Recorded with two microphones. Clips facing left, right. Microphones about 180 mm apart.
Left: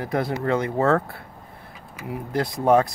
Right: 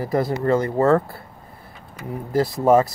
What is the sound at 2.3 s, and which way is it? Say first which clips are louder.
Speech: right 3 dB; centre (ahead or behind).